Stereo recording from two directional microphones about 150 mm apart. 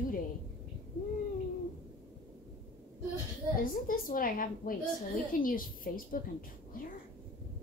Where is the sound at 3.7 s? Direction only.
65° left (ahead or behind).